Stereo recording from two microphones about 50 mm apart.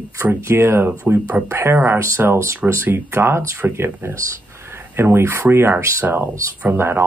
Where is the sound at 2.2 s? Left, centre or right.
Right.